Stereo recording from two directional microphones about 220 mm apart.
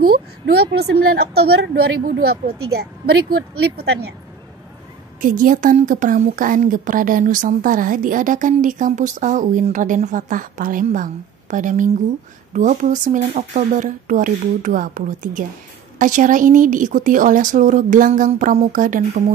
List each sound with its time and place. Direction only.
0.0 s a woman's voice: 45° right (ahead or behind)
5.2 s a woman's voice: 35° right (ahead or behind)